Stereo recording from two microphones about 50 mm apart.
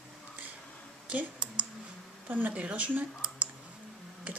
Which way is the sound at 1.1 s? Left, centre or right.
Right.